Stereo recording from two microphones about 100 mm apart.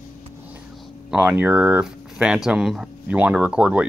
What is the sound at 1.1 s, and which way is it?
Speech, 20° right (ahead or behind).